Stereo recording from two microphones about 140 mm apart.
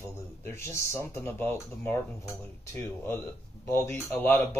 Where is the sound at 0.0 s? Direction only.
15° left (ahead or behind).